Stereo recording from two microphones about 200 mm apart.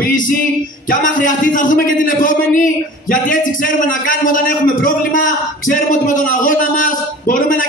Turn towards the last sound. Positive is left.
turn(degrees=45)  # may be behind; listen again after turning